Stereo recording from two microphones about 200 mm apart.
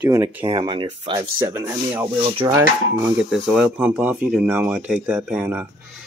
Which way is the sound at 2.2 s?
25° right (ahead or behind).